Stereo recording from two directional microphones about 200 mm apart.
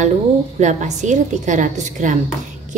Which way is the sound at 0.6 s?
35° right (ahead or behind).